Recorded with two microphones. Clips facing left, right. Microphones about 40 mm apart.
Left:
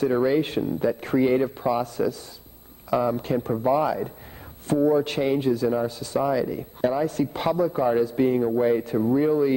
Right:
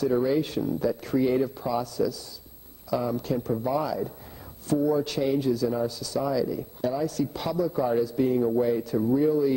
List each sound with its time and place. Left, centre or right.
0.0 s a man's voice: left